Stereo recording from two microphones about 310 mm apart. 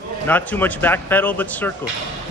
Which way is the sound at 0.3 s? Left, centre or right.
Centre.